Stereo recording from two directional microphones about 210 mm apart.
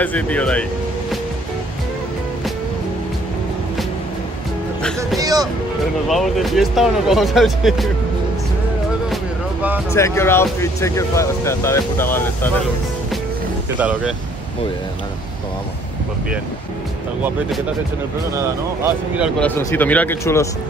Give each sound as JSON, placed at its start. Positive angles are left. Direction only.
{"t": 0.0, "sound": "speech", "side_deg": 5}
{"t": 5.2, "sound": "music", "side_deg": -20}
{"t": 6.0, "sound": "speech", "side_deg": 0}
{"t": 9.1, "sound": "music", "side_deg": -5}
{"t": 9.9, "sound": "speech", "side_deg": 10}
{"t": 13.7, "sound": "speech", "side_deg": -5}
{"t": 19.4, "sound": "speech", "side_deg": 10}